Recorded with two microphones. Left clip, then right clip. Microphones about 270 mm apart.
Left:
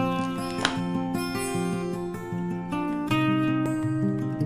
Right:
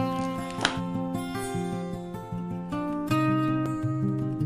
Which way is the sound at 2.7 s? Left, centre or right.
Right.